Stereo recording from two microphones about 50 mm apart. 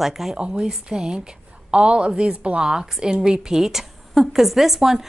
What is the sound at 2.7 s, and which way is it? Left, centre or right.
A woman's voice, centre.